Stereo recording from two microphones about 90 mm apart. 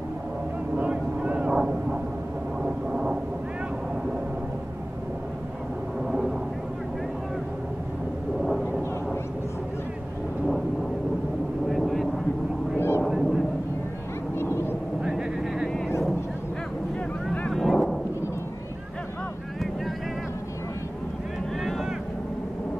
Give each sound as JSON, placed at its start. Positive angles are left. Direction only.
{"t": 0.7, "sound": "vehicle", "side_deg": -15}
{"t": 8.4, "sound": "a sound", "side_deg": 0}
{"t": 11.7, "sound": "vehicle", "side_deg": 0}
{"t": 12.7, "sound": "a sound", "side_deg": 25}
{"t": 13.0, "sound": "honk", "side_deg": 0}
{"t": 14.4, "sound": "vehicle", "side_deg": 25}
{"t": 15.0, "sound": "vehicle", "side_deg": -5}
{"t": 17.5, "sound": "a sound", "side_deg": 5}
{"t": 21.6, "sound": "vehicle", "side_deg": -5}